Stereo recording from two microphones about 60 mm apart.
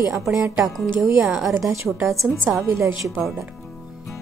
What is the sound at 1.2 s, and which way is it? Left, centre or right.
A woman's voice, centre.